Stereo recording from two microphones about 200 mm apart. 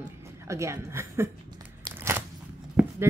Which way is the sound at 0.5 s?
15° right (ahead or behind).